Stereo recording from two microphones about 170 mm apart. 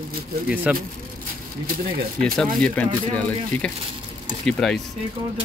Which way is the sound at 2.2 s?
5° left (ahead or behind).